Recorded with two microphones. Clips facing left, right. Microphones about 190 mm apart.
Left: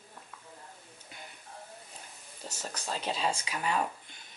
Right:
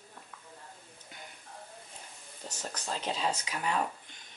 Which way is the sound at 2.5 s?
10° left (ahead or behind).